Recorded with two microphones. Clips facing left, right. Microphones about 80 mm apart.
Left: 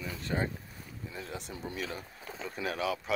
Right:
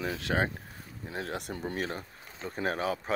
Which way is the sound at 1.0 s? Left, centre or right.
Right.